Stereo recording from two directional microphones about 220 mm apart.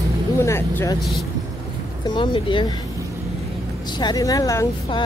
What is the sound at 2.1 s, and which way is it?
Speech, 20° left (ahead or behind).